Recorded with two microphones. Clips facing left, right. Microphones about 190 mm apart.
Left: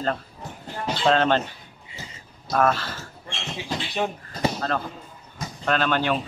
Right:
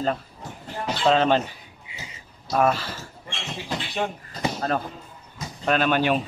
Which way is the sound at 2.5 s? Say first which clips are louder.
Even; 10° right (ahead or behind).